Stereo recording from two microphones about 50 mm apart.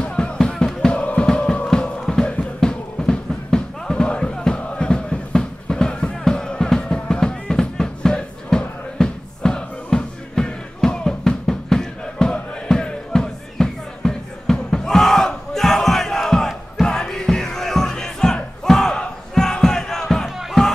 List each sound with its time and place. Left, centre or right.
0.0 s music: centre